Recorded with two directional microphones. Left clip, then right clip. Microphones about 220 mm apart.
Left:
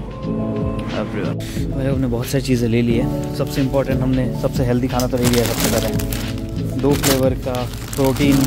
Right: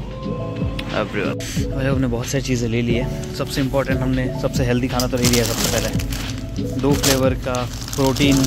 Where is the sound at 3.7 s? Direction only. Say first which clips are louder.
Left 1 dB; 10° left (ahead or behind).